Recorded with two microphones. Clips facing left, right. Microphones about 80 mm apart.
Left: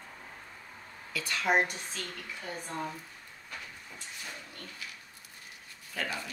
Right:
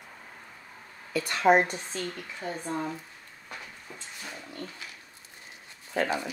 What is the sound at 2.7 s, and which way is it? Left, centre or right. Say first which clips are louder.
Speech: right 4 dB; centre.